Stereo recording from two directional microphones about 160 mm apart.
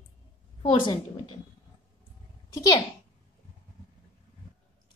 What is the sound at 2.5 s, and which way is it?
Speech, 20° left (ahead or behind).